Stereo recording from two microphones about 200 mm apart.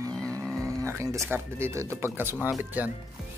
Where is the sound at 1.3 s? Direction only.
15° right (ahead or behind).